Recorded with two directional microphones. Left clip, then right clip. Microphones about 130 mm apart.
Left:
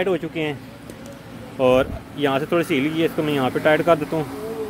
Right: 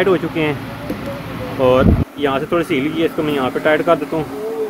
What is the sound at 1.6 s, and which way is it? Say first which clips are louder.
Speech: right 4 dB; 60° left (ahead or behind).